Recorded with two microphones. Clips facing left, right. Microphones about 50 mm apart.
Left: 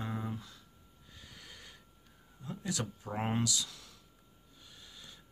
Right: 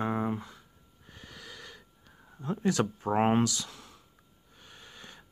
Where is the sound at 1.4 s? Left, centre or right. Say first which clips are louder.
Right 8 dB; right.